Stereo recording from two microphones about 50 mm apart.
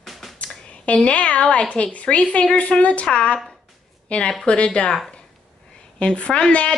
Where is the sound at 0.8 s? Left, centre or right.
Left.